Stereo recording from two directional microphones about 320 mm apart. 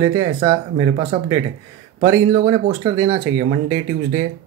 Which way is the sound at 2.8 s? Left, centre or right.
Centre.